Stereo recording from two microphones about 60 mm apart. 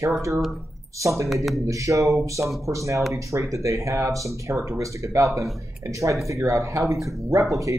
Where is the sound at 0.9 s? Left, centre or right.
Right.